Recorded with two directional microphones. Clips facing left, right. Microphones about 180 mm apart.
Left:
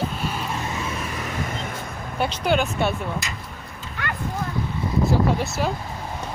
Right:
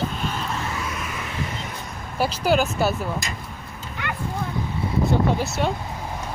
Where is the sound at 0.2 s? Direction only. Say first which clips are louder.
Even; 10° left (ahead or behind).